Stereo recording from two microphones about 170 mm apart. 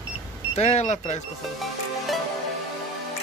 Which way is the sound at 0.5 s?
40° left (ahead or behind).